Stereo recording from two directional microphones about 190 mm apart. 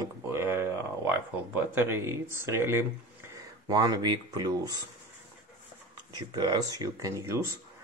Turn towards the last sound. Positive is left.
turn(degrees=-20)  # may be behind; listen again after turning